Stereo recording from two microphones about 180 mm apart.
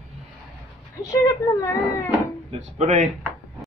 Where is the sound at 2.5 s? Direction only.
40° right (ahead or behind).